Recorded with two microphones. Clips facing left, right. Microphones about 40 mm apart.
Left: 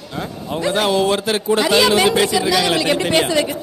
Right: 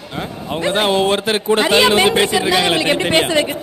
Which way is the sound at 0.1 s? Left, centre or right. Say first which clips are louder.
Right 1 dB; right.